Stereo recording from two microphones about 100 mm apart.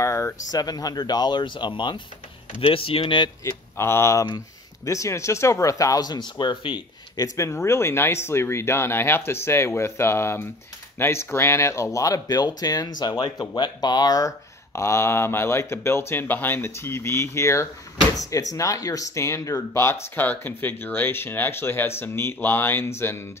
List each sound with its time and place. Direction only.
0.0 s speech: 30° left (ahead or behind); by 2.0 s 50° left (ahead or behind)
2.6 s speech: 65° left (ahead or behind)
3.4 s speech: 25° left (ahead or behind); by 6.8 s 55° left (ahead or behind)
7.2 s speech: 30° left (ahead or behind)